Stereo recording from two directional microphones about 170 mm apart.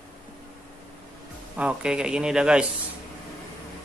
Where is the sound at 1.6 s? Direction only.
5° right (ahead or behind).